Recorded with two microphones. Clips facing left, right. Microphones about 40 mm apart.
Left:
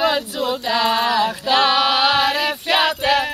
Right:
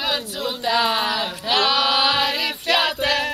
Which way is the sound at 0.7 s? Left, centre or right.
Centre.